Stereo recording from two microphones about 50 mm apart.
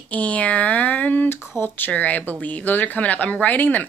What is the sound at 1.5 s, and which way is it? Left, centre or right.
Speech, left.